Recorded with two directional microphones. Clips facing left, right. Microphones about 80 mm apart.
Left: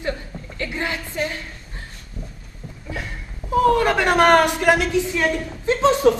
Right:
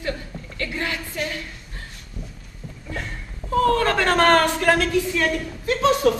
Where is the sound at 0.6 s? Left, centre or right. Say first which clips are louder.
Left 1 dB; left.